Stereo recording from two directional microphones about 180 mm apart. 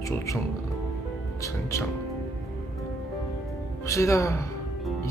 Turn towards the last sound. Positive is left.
turn(degrees=15)  # may be behind; listen again after turning